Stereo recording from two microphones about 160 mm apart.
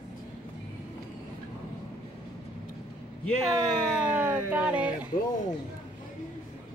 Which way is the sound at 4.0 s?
10° right (ahead or behind).